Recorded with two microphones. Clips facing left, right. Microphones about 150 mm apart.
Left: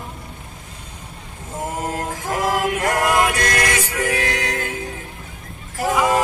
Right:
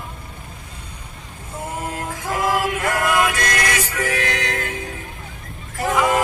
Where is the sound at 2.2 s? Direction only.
40° left (ahead or behind).